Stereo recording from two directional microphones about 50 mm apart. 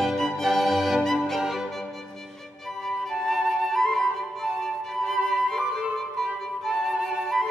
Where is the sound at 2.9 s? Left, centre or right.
Centre.